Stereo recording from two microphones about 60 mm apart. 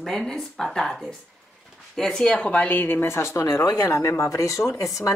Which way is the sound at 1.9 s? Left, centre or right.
Centre.